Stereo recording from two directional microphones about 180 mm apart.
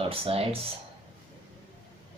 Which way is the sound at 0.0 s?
30° right (ahead or behind).